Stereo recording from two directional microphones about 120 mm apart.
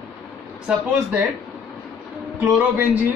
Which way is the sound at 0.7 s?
5° right (ahead or behind).